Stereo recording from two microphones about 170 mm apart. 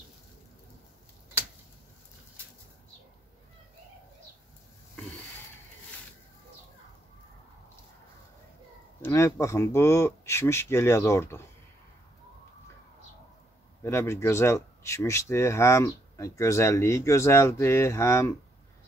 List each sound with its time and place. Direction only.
9.0 s speech: 15° left (ahead or behind)
13.8 s speech: 15° left (ahead or behind)